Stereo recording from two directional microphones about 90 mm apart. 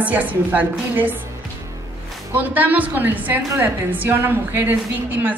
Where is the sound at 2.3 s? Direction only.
20° right (ahead or behind).